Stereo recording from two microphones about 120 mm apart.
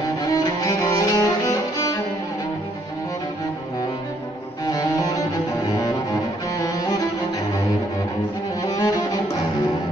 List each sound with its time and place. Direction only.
0.3 s music: 30° left (ahead or behind)
4.6 s cello: 30° left (ahead or behind)
6.5 s music: 30° left (ahead or behind)
8.6 s cello: 30° left (ahead or behind)